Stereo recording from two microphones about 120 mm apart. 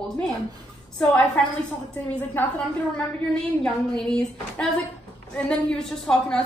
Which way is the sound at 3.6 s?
5° left (ahead or behind).